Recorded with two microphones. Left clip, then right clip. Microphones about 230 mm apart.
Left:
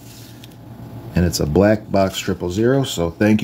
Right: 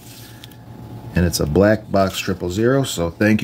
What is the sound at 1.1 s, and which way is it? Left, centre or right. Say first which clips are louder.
Speech: even; centre.